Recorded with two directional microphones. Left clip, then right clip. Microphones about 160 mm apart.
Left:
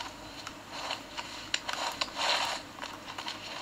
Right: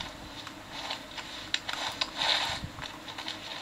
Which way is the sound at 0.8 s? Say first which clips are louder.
Even; 40° left (ahead or behind).